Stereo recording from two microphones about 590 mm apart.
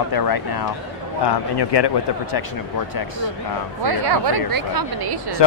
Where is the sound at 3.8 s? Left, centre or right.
Right.